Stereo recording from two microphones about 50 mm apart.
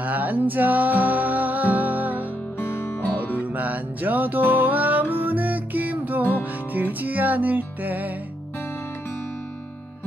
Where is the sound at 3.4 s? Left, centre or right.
Right.